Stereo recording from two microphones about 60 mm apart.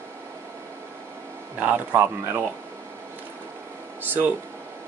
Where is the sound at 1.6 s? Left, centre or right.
Right.